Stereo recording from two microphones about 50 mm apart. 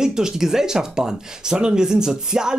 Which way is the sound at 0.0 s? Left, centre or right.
Centre.